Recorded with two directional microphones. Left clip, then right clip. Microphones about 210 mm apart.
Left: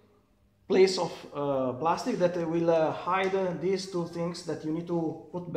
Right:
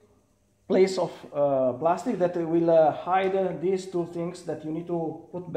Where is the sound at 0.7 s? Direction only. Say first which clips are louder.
Right 1 dB; 50° right (ahead or behind).